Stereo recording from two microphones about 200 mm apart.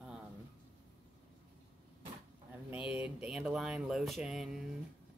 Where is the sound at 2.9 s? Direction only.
5° right (ahead or behind).